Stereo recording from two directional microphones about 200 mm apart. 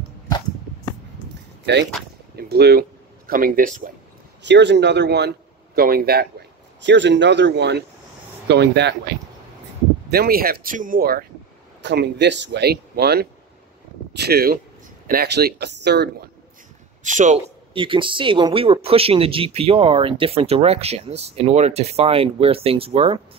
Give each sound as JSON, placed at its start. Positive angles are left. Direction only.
{"t": 2.3, "sound": "speech", "side_deg": -50}
{"t": 4.4, "sound": "speech", "side_deg": -60}
{"t": 6.8, "sound": "speech", "side_deg": -60}
{"t": 10.0, "sound": "speech", "side_deg": -50}
{"t": 11.8, "sound": "speech", "side_deg": -60}
{"t": 17.0, "sound": "a man's voice", "side_deg": -40}
{"t": 17.7, "sound": "speech", "side_deg": -25}